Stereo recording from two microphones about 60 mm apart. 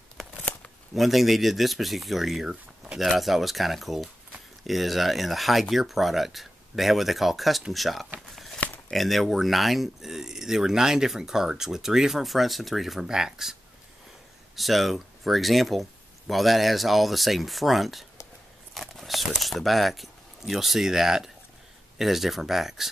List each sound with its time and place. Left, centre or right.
0.9 s speech: centre
18.8 s a sound: centre
19.3 s speech: centre